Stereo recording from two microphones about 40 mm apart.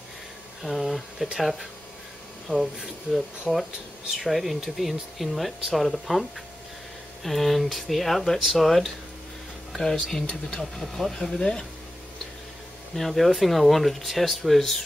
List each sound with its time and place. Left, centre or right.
0.6 s speech: centre
2.5 s speech: centre
3.5 s speech: centre
4.1 s speech: centre
7.2 s speech: centre
12.9 s speech: centre